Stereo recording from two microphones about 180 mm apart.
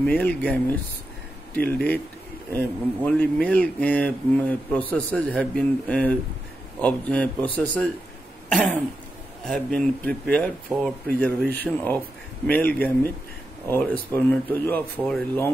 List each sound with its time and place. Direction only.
0.0 s speech: 10° left (ahead or behind)
8.5 s cough: 5° left (ahead or behind)
9.5 s speech: 5° left (ahead or behind)